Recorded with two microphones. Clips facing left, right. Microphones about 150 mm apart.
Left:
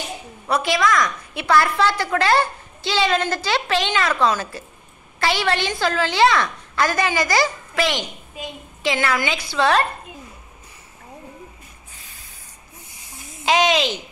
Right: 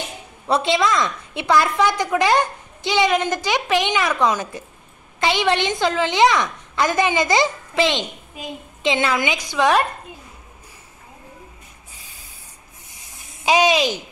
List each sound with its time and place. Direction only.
0.5 s a woman's voice: 25° right (ahead or behind)
13.5 s a woman's voice: 10° right (ahead or behind)